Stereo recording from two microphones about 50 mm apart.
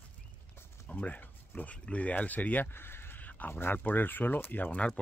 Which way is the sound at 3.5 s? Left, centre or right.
Left.